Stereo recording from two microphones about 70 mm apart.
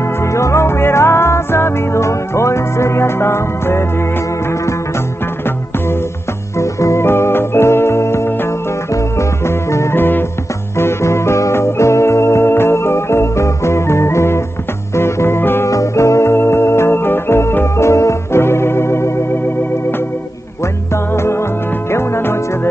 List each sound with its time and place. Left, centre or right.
0.2 s music: left
6.6 s music: left
9.5 s music: left
15.7 s music: left
20.9 s music: left